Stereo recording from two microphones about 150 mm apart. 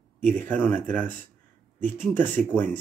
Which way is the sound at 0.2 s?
10° left (ahead or behind).